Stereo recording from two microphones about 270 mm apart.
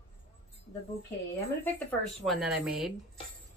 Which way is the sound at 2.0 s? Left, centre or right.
Centre.